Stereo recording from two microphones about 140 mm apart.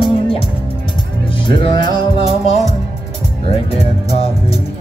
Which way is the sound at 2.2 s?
55° left (ahead or behind).